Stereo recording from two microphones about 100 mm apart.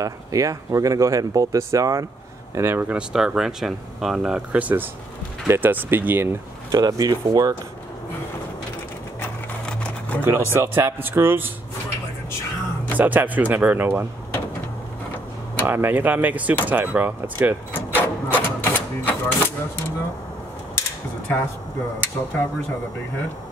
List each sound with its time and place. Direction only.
0.0 s speech: 35° right (ahead or behind)
2.5 s speech: 20° right (ahead or behind)
3.0 s speech: 10° right (ahead or behind)
6.7 s speech: 40° right (ahead or behind)
9.7 s a sound: 10° left (ahead or behind)
10.2 s speech: 25° right (ahead or behind)
12.3 s music: 25° left (ahead or behind)
12.9 s speech: 15° right (ahead or behind)
15.6 s speech: 20° right (ahead or behind)
17.7 s typewriter: 20° left (ahead or behind)